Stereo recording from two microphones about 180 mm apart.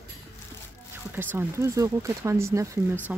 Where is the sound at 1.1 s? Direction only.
10° right (ahead or behind).